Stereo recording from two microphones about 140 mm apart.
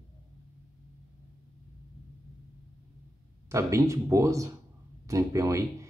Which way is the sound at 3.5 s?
20° right (ahead or behind).